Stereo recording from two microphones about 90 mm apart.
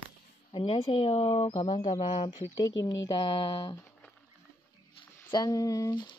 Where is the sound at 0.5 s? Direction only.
80° left.